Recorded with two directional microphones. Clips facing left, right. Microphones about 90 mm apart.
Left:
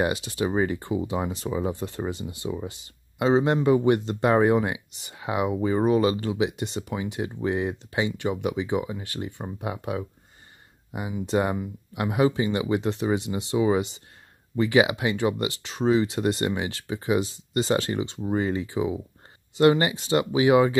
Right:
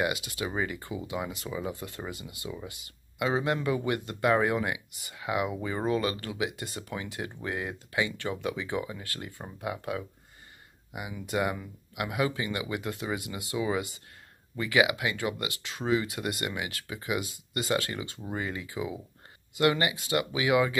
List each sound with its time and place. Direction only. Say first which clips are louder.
0.0 s speech: left 5 dB; 30° left (ahead or behind)